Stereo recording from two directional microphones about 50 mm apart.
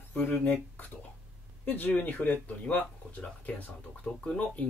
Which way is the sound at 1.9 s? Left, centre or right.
Left.